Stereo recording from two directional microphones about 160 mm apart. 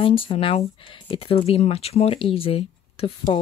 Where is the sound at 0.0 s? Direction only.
35° left (ahead or behind).